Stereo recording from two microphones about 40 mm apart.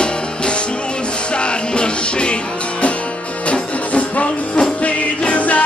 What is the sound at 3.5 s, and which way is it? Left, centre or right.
Music, left.